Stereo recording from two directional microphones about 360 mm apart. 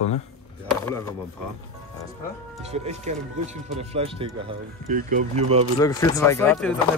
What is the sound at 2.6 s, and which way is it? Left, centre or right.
Speech, centre.